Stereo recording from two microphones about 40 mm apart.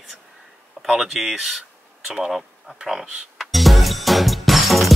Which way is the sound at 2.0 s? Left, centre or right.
Centre.